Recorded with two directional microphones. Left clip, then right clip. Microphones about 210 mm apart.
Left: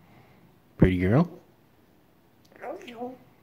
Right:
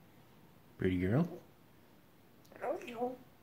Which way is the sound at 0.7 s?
35° left (ahead or behind).